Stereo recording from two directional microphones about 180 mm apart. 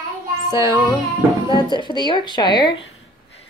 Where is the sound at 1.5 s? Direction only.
25° left (ahead or behind).